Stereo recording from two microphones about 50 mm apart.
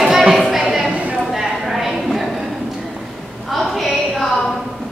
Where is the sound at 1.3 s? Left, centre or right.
Centre.